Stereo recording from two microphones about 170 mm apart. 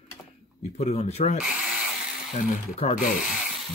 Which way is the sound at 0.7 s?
40° left (ahead or behind).